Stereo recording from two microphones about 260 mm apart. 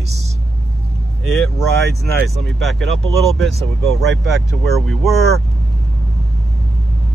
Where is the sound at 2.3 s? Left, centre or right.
Centre.